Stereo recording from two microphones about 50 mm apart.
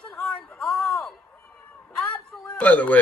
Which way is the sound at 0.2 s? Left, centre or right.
Left.